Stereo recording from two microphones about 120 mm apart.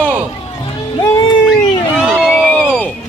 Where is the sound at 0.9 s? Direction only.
30° left (ahead or behind).